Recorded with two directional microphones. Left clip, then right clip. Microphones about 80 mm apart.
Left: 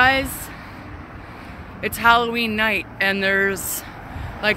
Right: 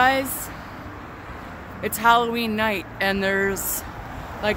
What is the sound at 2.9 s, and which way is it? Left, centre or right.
Speech, right.